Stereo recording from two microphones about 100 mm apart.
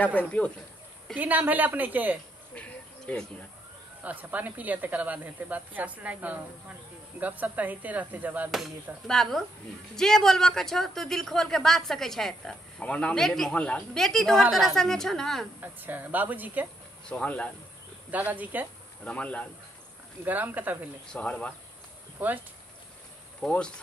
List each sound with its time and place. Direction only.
0.0 s speech: 15° left (ahead or behind)
1.1 s speech: 15° right (ahead or behind)
2.5 s a sound: 15° left (ahead or behind)
4.0 s speech: 15° right (ahead or behind)
8.5 s speech: centre (ahead or behind)
15.6 s speech: 20° right (ahead or behind)
17.0 s speech: 10° left (ahead or behind)
18.1 s speech: 15° right (ahead or behind)
19.0 s speech: 15° left (ahead or behind)
20.2 s speech: 20° right (ahead or behind)
21.1 s speech: 10° left (ahead or behind)
23.4 s speech: 10° left (ahead or behind)